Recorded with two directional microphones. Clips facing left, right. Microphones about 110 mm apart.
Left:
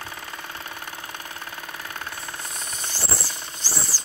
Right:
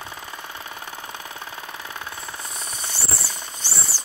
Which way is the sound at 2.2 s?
Centre (ahead or behind).